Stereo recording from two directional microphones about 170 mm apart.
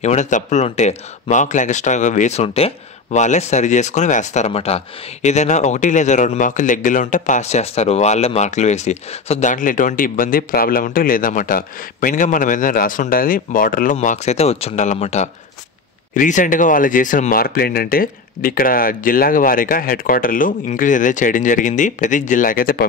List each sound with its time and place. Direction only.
0.0 s speech: 45° left (ahead or behind)
13.9 s speech: 40° left (ahead or behind); by 22.8 s 60° left (ahead or behind)